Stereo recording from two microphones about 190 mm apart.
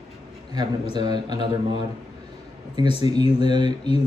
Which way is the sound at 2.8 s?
30° left (ahead or behind).